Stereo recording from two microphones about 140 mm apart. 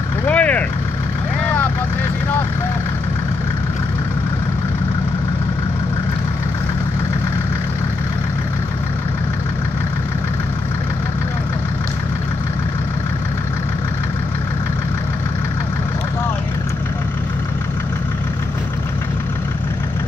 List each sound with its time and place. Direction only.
0.3 s vehicle: 10° left (ahead or behind)